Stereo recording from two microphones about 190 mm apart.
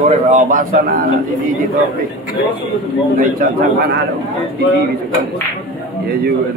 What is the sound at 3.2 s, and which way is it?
Speech, 45° right (ahead or behind).